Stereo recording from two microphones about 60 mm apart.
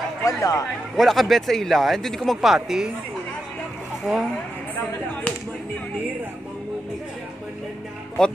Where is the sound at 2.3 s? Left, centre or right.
Centre.